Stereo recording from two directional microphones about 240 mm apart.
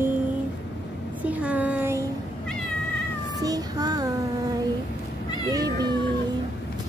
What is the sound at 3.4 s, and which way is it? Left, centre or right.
Speech, centre.